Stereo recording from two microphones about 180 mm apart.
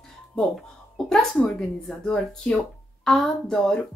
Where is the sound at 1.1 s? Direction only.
5° left (ahead or behind).